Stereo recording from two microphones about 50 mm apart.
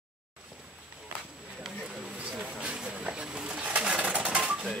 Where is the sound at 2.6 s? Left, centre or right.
Right.